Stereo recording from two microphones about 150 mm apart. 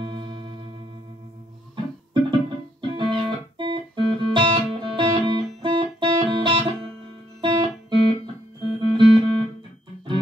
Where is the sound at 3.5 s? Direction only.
30° right (ahead or behind).